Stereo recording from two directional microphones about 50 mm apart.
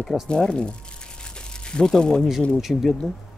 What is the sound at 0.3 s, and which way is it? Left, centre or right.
Speech, centre.